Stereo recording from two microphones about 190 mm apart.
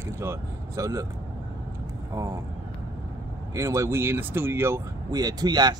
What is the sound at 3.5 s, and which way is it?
Speech, 15° right (ahead or behind).